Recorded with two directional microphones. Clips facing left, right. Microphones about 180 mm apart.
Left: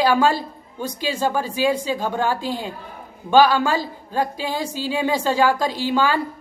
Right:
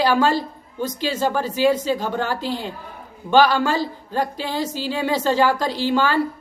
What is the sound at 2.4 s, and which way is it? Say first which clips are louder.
Speech: even; 45° left (ahead or behind).